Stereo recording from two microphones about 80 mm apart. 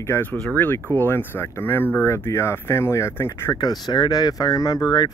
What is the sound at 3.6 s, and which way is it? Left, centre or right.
Speech, left.